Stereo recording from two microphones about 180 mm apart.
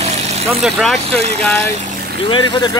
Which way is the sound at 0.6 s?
Centre (ahead or behind).